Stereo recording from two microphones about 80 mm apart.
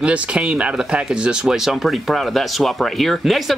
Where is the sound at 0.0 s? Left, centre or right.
Centre.